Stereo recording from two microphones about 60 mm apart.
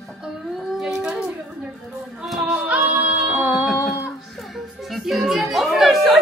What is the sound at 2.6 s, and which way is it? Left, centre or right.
Music, right.